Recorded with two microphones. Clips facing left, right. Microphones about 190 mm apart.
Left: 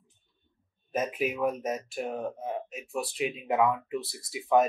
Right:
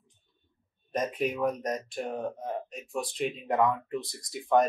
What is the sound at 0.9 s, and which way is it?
Speech, 5° left (ahead or behind).